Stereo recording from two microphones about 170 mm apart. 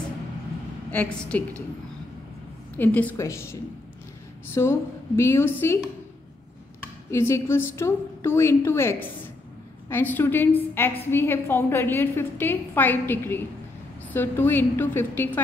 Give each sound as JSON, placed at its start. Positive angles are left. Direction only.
{"t": 0.9, "sound": "a woman's voice", "side_deg": 5}
{"t": 2.8, "sound": "a woman's voice", "side_deg": 10}
{"t": 4.6, "sound": "a woman's voice", "side_deg": 15}
{"t": 6.8, "sound": "a woman's voice", "side_deg": 15}